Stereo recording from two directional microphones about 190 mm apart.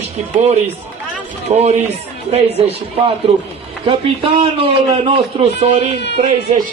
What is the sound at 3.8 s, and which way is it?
Speech, 30° right (ahead or behind).